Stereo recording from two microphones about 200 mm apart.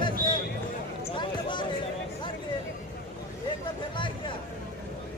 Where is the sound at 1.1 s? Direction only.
25° left (ahead or behind).